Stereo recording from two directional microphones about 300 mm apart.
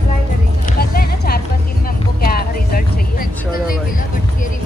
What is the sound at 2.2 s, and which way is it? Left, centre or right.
Vehicle, left.